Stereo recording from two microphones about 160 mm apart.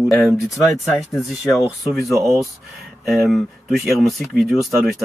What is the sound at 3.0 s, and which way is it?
Speech, centre (ahead or behind).